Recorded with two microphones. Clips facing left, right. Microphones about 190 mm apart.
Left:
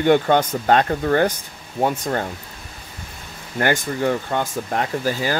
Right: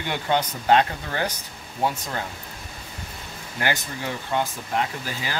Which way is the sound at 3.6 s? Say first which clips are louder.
Left 8 dB; 50° left (ahead or behind).